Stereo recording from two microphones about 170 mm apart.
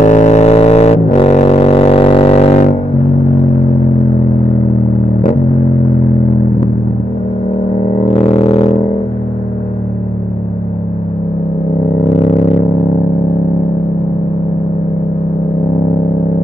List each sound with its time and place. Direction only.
0.0 s music: 45° left (ahead or behind)
8.2 s didgeridoo: 35° left (ahead or behind)